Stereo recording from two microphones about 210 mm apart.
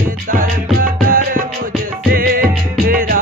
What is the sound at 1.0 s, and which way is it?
Music, 40° right (ahead or behind).